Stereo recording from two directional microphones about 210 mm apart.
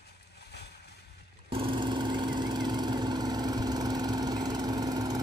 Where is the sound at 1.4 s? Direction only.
25° right (ahead or behind).